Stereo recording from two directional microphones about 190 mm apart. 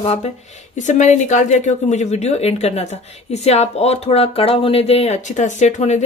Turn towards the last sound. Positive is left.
turn(degrees=35)  # may be behind; listen again after turning